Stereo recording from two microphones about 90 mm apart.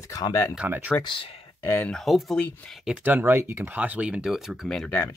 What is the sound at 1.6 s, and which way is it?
Speech, 20° left (ahead or behind).